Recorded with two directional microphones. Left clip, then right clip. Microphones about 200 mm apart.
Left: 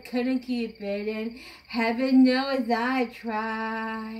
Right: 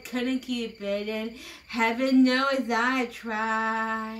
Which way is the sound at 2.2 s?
50° right (ahead or behind).